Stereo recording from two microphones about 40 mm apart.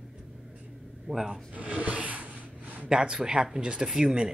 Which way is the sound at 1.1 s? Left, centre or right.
Right.